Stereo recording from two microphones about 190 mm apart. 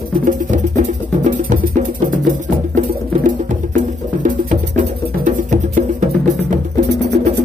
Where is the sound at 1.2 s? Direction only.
45° right (ahead or behind).